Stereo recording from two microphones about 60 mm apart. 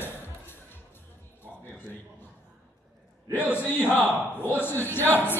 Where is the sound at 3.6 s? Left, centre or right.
Left.